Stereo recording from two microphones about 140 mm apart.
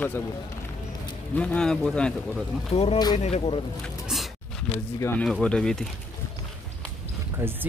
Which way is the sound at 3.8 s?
Centre (ahead or behind).